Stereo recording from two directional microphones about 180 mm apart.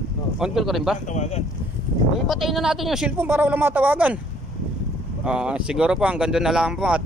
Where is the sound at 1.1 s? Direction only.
40° left (ahead or behind).